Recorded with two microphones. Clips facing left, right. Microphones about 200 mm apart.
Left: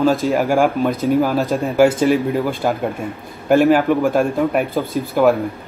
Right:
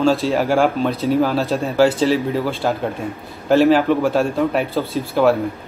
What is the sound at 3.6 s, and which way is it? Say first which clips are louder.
Speech: right 1 dB; 15° left (ahead or behind).